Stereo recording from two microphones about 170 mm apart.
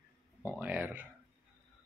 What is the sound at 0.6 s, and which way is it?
Speech, 10° right (ahead or behind).